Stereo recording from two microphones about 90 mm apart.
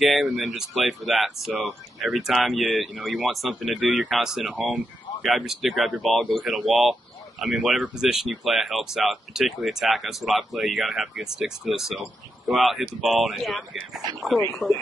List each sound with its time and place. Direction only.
0.0 s speech: centre (ahead or behind)
4.6 s speech: 15° right (ahead or behind)
5.2 s speech: 5° right (ahead or behind)